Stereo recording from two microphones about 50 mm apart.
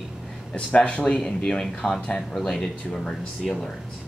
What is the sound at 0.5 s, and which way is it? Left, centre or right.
Speech, centre.